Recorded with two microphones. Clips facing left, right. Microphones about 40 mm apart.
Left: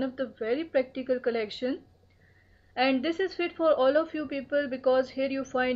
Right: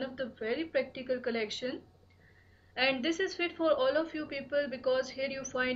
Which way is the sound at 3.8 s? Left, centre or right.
Centre.